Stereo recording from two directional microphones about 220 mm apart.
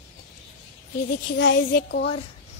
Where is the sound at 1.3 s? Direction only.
55° left (ahead or behind).